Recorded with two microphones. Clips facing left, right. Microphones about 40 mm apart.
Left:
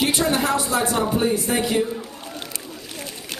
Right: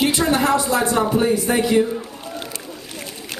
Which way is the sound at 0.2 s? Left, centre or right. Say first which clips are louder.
Right 3 dB; centre.